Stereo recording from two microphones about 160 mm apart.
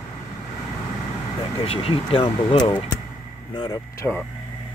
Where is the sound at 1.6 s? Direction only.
35° left (ahead or behind); by 4.3 s 15° left (ahead or behind).